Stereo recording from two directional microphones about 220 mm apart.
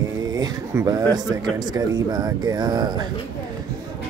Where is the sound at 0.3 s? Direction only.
15° right (ahead or behind).